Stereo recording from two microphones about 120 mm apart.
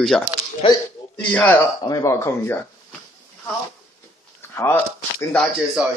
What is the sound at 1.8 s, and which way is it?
Speech, 25° left (ahead or behind).